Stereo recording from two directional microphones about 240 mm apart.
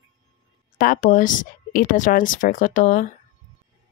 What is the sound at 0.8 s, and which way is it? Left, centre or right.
Speech, left.